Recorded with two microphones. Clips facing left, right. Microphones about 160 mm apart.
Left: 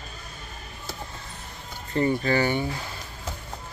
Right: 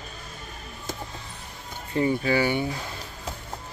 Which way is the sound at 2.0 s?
10° right (ahead or behind).